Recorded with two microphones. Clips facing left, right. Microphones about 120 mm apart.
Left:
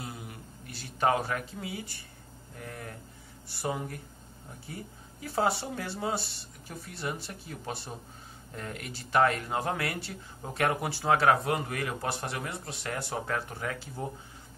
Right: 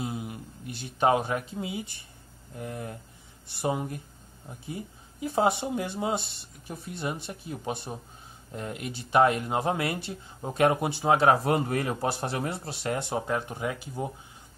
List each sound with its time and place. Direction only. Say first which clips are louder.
0.0 s speech: right 8 dB; 20° right (ahead or behind)